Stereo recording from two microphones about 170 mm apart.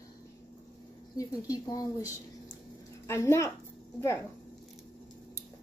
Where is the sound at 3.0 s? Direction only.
15° left (ahead or behind).